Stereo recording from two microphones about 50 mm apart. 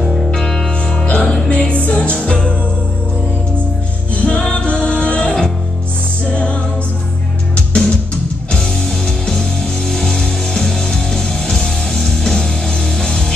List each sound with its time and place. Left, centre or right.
0.0 s music: centre
0.3 s music: centre
1.0 s music: left
4.1 s music: left
6.3 s music: left